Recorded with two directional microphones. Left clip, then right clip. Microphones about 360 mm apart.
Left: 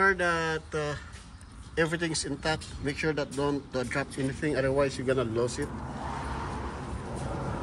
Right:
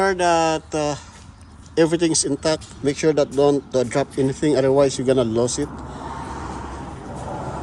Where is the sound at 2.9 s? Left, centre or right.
Right.